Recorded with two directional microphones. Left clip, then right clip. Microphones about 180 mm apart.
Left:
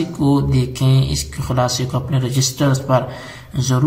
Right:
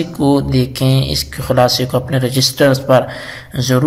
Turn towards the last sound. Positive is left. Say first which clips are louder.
# right 6 dB
turn(degrees=-25)  # may be behind; listen again after turning